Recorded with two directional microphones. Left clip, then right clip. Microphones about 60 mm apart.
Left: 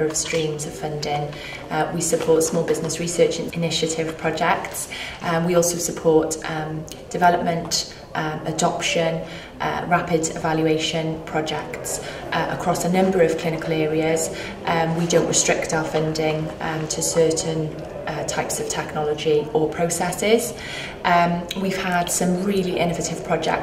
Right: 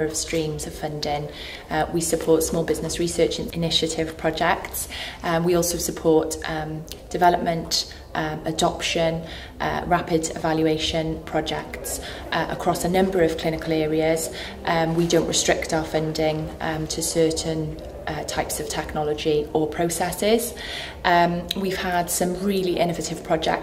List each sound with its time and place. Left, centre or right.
0.0 s a woman's voice: left
1.7 s a woman's voice: left
7.2 s a woman's voice: left